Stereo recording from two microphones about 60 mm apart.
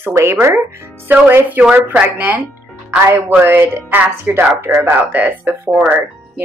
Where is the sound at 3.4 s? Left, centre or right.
Right.